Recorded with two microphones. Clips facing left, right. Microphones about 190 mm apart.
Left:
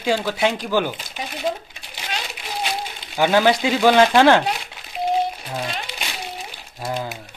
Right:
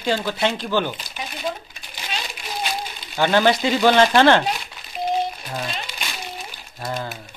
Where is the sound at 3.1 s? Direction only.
10° left (ahead or behind).